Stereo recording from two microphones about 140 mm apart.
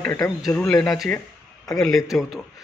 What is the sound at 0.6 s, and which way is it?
A man's voice, 5° left (ahead or behind).